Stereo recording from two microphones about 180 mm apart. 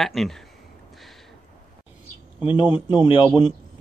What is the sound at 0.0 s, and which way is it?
Speech, centre (ahead or behind).